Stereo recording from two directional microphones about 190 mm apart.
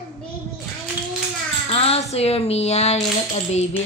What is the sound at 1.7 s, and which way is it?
A woman's voice, 30° left (ahead or behind).